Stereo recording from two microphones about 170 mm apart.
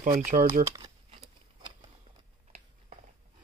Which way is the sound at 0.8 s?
30° right (ahead or behind).